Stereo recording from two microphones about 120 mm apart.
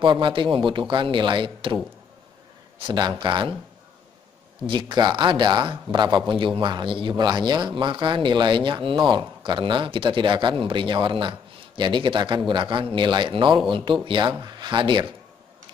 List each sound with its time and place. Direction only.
0.0 s speech: 45° right (ahead or behind)
2.8 s speech: 40° right (ahead or behind)
4.6 s speech: 40° right (ahead or behind)